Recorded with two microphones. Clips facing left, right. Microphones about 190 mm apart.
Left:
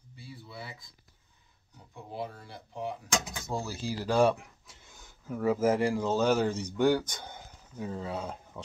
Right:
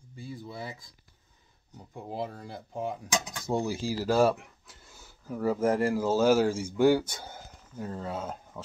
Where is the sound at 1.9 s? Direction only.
40° right (ahead or behind).